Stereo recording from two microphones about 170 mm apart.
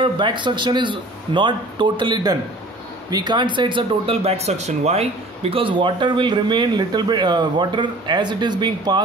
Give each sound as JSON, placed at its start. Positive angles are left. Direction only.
{"t": 0.0, "sound": "speech", "side_deg": -30}